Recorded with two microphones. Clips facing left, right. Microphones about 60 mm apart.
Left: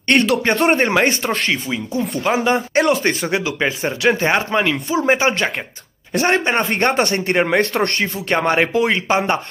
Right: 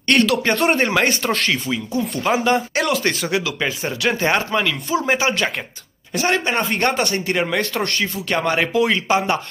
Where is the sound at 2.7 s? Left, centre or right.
Left.